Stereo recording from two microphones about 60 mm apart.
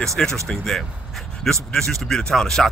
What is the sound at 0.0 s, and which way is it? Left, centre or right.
Speech, centre.